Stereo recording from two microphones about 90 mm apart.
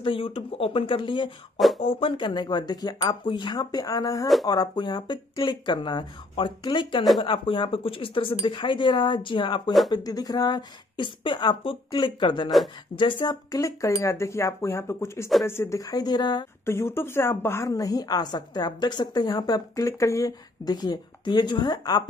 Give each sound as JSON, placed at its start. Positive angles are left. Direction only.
{"t": 0.0, "sound": "speech", "side_deg": 85}
{"t": 1.8, "sound": "a woman's voice", "side_deg": 85}
{"t": 7.2, "sound": "speech", "side_deg": 75}
{"t": 8.5, "sound": "a woman's voice", "side_deg": 60}
{"t": 9.8, "sound": "a woman's voice", "side_deg": 45}
{"t": 15.8, "sound": "a woman's voice", "side_deg": 45}
{"t": 16.6, "sound": "a woman's voice", "side_deg": 30}